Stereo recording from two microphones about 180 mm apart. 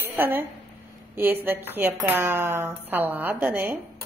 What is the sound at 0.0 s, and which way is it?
A woman's voice, 10° right (ahead or behind).